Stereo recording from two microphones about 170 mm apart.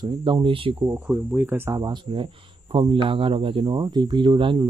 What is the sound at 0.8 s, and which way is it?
Speech, 10° right (ahead or behind).